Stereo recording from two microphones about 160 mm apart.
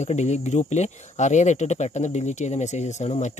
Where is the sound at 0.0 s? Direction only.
45° left (ahead or behind).